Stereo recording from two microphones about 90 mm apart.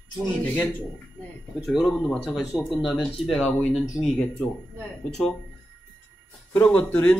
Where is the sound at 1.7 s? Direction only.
Centre (ahead or behind).